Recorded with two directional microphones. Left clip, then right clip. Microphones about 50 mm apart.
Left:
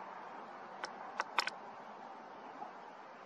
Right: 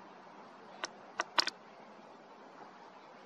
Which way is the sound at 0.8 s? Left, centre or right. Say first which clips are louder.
Right 2 dB; centre.